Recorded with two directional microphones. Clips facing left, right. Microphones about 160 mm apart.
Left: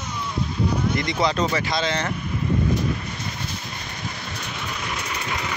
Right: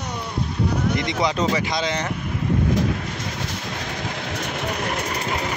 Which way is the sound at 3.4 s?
90° right.